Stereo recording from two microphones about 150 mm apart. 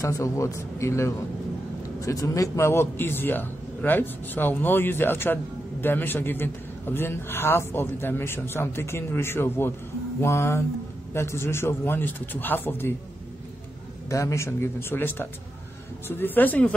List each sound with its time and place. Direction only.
0.0 s a man's voice: 20° left (ahead or behind)
14.0 s a man's voice: 20° left (ahead or behind)